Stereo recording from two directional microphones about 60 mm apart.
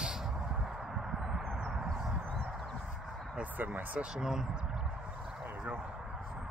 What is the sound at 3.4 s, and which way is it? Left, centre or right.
Speech, right.